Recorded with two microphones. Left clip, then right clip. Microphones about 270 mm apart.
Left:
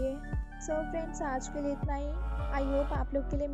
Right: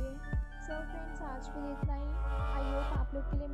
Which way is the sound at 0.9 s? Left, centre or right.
Left.